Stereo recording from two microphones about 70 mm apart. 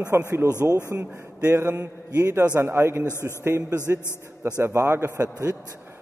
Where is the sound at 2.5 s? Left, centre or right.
Right.